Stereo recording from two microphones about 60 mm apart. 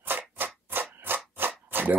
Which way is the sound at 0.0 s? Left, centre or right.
Right.